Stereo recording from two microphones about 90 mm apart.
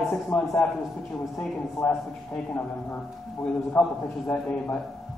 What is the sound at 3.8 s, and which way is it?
Speech, 15° left (ahead or behind).